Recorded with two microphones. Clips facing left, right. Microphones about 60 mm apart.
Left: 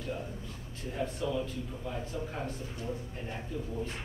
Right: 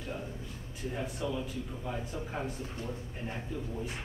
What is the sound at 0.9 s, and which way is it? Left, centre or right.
A man's voice, centre.